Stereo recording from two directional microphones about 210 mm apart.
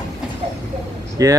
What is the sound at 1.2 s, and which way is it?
Speech, 15° right (ahead or behind).